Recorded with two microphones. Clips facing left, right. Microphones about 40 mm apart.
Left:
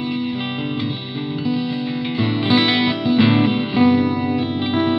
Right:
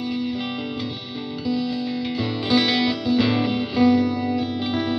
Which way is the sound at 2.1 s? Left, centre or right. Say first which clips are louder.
Left 4 dB; left.